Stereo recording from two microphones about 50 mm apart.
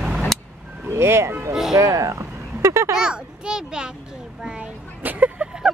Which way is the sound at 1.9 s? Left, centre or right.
Right.